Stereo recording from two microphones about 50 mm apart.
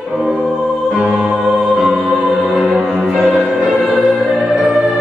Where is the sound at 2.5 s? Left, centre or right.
Centre.